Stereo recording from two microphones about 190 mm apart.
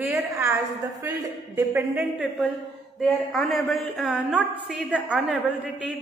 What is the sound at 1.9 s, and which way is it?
A woman's voice, 5° right (ahead or behind).